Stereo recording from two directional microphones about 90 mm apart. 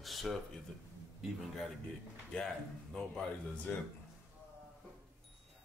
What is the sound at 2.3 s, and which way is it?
Speech, 5° left (ahead or behind).